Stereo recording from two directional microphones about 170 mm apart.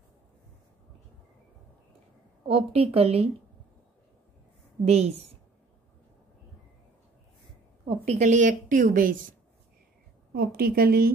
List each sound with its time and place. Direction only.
2.4 s a woman's voice: 35° right (ahead or behind)
4.8 s a woman's voice: 40° right (ahead or behind)
8.0 s speech: 45° right (ahead or behind)
10.3 s a woman's voice: 60° right (ahead or behind)